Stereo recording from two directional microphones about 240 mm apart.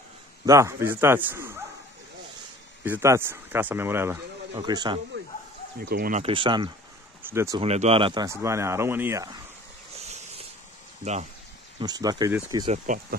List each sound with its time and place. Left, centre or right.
0.5 s speech: centre
2.8 s speech: centre
5.8 s speech: right
6.2 s speech: right
7.6 s speech: right; by 9.3 s centre
9.9 s a sound: right
11.8 s speech: centre
12.7 s speech: right